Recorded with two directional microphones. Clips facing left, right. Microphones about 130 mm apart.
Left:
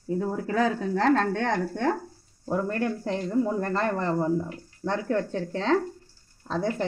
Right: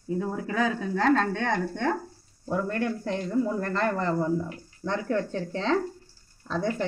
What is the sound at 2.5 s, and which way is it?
Speech, 40° left (ahead or behind).